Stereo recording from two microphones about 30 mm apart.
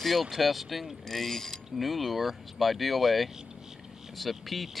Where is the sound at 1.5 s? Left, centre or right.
Centre.